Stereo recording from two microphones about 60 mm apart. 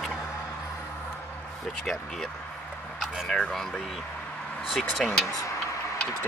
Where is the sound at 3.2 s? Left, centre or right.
Centre.